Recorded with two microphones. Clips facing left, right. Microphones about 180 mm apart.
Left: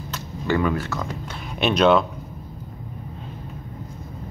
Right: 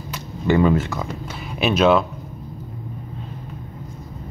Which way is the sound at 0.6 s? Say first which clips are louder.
Right 6 dB; 25° right (ahead or behind).